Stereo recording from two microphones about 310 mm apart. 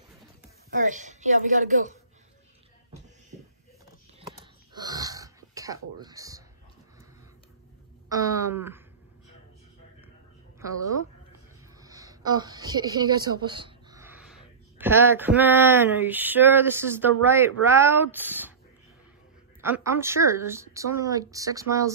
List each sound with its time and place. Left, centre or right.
0.7 s a woman's voice: right
4.3 s a sound: centre
8.2 s speech: centre
11.8 s a woman's voice: centre
19.6 s speech: centre